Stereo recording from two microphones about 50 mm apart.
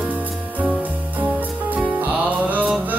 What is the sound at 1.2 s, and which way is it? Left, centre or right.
Music, right.